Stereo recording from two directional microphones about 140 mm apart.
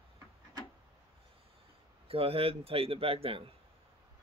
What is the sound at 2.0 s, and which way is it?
Speech, 45° right (ahead or behind).